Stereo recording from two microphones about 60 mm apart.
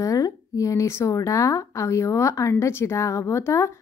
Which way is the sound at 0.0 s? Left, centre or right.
Left.